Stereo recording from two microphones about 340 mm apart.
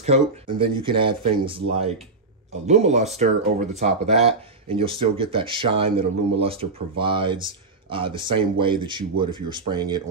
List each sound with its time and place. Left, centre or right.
0.0 s speech: centre